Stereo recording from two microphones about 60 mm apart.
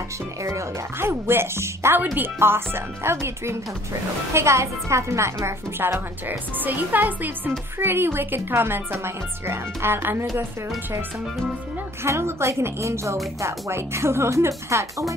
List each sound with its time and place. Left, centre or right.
0.4 s speech: right
5.8 s a woman's voice: right
12.0 s speech: right